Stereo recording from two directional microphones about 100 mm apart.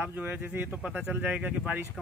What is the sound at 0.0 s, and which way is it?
Speech, 15° right (ahead or behind).